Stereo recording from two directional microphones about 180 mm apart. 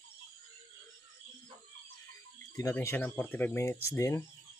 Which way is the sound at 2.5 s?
15° left (ahead or behind).